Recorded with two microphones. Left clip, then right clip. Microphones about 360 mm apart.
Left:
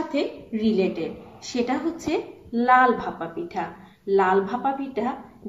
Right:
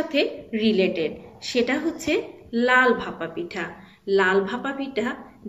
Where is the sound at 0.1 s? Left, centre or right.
Centre.